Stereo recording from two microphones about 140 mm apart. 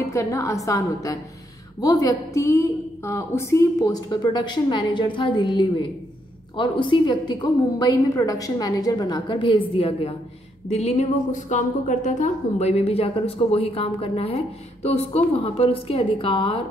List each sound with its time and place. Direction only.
0.1 s a woman's voice: 20° left (ahead or behind); by 16.6 s 40° left (ahead or behind)